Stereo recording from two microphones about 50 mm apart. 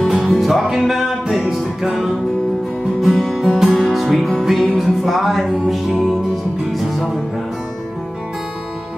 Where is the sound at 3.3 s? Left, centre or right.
Centre.